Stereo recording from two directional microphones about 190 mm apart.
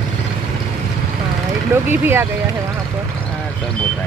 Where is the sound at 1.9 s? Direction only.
10° right (ahead or behind).